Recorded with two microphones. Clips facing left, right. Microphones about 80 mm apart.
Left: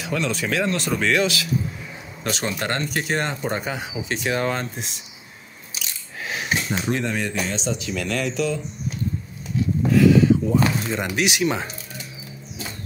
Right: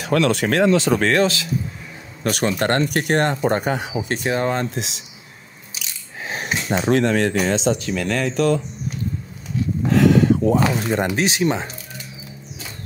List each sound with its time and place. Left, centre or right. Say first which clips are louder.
0.0 s speech: right 7 dB; right
1.0 s speech: right 3 dB; right
2.2 s speech: right 6 dB; right
4.3 s speech: right 3 dB; right
4.6 s speech: right 6 dB; right
6.2 s a sound: right 1 dB; right
6.9 s speech: right 9 dB; right
7.8 s speech: right 3 dB; right
9.8 s a sound: even; right
10.4 s speech: right 3 dB; right
11.0 s speech: right 3 dB; right